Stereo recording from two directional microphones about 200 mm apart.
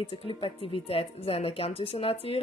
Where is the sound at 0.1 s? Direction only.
25° left (ahead or behind).